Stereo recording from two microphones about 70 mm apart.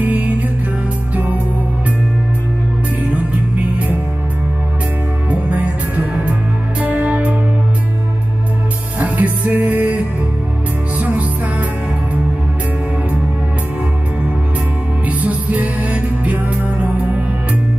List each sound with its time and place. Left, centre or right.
0.0 s music: right
3.5 s music: right
5.3 s music: right
9.0 s music: right
15.0 s music: right